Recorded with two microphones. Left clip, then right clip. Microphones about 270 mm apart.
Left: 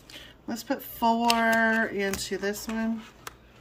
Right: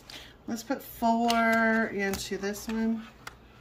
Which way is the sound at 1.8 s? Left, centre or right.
Centre.